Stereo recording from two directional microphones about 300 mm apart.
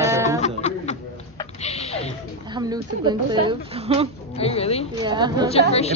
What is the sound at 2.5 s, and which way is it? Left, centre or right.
A woman's voice, centre.